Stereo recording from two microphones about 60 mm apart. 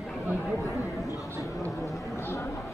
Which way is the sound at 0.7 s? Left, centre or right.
Left.